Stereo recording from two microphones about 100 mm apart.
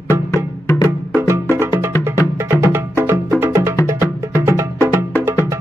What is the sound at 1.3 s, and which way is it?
Music, 25° right (ahead or behind).